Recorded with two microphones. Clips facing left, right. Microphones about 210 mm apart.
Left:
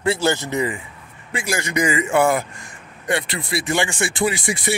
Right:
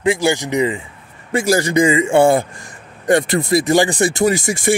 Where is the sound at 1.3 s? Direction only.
40° right (ahead or behind).